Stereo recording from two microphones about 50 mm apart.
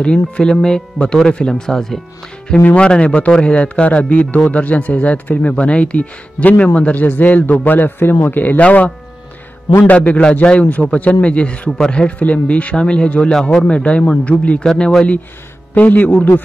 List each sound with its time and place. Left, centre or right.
0.0 s speech: centre
2.7 s a man's voice: left
8.5 s a man's voice: left
9.8 s a man's voice: left
13.4 s speech: centre
13.7 s a man's voice: left
14.6 s speech: centre
15.7 s speech: left